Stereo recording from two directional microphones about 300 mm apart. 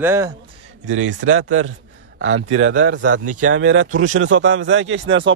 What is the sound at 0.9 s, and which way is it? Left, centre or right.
A man's voice, right.